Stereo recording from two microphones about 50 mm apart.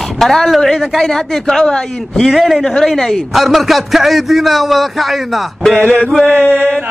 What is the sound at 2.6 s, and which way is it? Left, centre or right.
Speech, centre.